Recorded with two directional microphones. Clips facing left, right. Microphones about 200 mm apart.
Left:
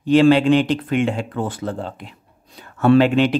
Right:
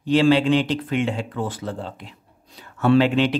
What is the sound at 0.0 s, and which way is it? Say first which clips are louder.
Speech: left 4 dB; 50° left (ahead or behind).